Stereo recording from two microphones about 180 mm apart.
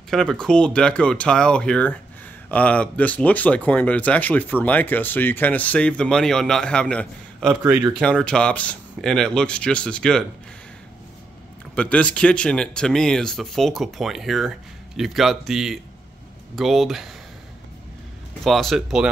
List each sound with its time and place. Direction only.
0.1 s speech: centre (ahead or behind)
8.0 s speech: 5° left (ahead or behind)
11.7 s speech: 5° left (ahead or behind)
18.4 s speech: centre (ahead or behind)